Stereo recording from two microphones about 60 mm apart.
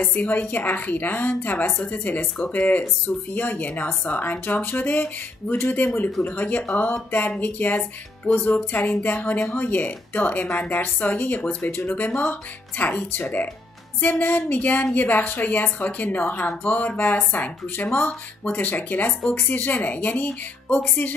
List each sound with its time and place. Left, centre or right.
0.0 s speech: left